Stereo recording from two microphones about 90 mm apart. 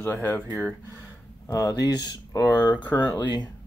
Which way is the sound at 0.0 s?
20° left (ahead or behind).